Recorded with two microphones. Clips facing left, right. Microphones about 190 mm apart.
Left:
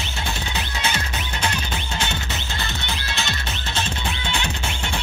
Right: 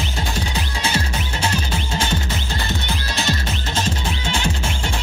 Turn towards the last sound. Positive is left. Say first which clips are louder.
# right 3 dB
turn(degrees=-45)  # may be behind; listen again after turning